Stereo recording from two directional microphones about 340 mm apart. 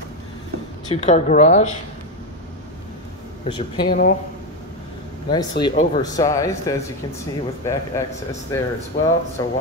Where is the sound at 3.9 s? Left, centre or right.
Left.